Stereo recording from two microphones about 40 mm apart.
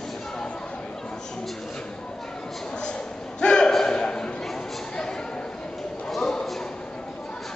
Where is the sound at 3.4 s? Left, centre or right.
Left.